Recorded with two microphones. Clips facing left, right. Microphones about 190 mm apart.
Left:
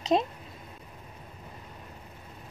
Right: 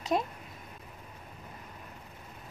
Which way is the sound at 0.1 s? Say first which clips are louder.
Left 4 dB; 25° left (ahead or behind).